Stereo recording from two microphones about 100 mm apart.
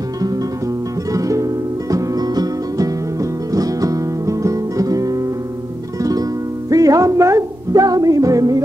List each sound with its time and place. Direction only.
1.1 s music: 35° right (ahead or behind)
6.7 s music: 35° right (ahead or behind)